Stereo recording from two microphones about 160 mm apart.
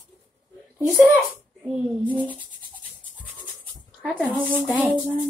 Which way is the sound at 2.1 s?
10° left (ahead or behind).